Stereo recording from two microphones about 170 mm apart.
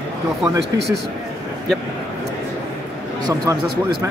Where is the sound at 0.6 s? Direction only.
75° right (ahead or behind).